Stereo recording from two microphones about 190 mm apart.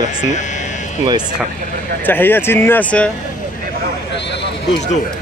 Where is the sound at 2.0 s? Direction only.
10° left (ahead or behind).